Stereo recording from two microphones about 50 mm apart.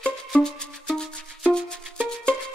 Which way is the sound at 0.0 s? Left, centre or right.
Centre.